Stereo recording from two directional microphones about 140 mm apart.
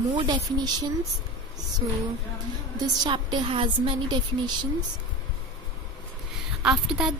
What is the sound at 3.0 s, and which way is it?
A woman's voice, 35° right (ahead or behind).